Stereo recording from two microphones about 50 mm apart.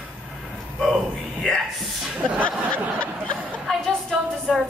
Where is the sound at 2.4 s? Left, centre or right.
Left.